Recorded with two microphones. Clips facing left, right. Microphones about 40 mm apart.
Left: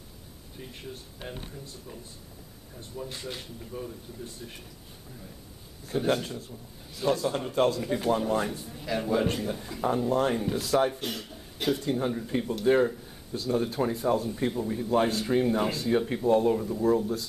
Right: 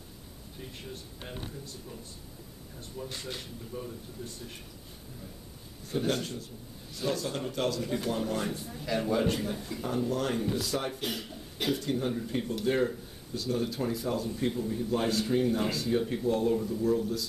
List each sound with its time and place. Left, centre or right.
1.2 s speech: centre
3.0 s speech: centre
5.9 s a man's voice: centre
7.5 s speech: left
7.8 s speech: centre
8.5 s a man's voice: centre
9.6 s speech: left
10.5 s speech: left
10.9 s a man's voice: centre
11.8 s speech: centre
12.1 s a man's voice: centre
13.3 s speech: left